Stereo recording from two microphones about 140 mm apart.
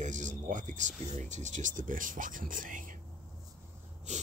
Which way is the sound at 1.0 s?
60° right (ahead or behind).